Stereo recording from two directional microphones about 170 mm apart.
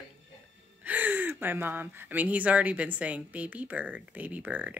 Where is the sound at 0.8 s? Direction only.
10° right (ahead or behind).